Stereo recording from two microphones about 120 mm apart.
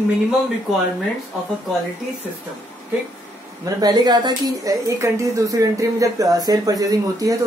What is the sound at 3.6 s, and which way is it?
A woman's voice, 35° right (ahead or behind).